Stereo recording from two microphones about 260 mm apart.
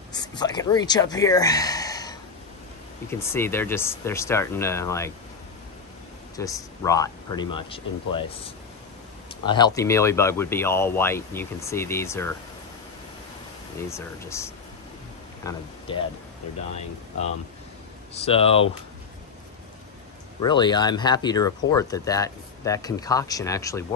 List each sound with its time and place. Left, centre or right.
0.1 s speech: centre
6.3 s speech: centre
13.8 s speech: centre
18.1 s speech: left
20.3 s speech: centre